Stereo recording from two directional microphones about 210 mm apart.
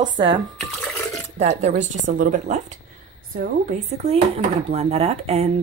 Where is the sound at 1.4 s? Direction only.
30° right (ahead or behind).